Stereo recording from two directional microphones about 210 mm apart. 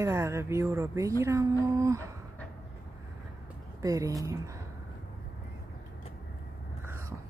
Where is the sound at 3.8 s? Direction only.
15° right (ahead or behind).